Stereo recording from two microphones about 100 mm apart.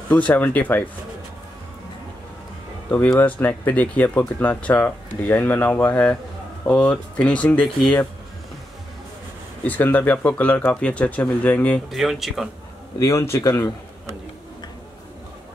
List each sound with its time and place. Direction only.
0.1 s speech: 15° left (ahead or behind)
3.1 s speech: 20° left (ahead or behind)
9.7 s speech: 15° left (ahead or behind)
11.9 s speech: centre (ahead or behind)
13.0 s a man's voice: 30° left (ahead or behind)